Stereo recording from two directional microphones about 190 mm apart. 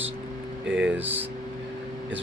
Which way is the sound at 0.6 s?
5° right (ahead or behind).